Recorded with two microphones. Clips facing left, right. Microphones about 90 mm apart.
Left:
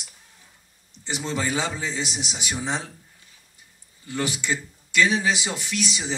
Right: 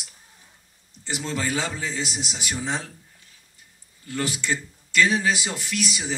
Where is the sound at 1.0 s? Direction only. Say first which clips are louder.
Left 1 dB; 15° left (ahead or behind).